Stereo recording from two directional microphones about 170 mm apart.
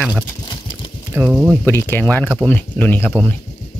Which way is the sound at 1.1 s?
15° right (ahead or behind).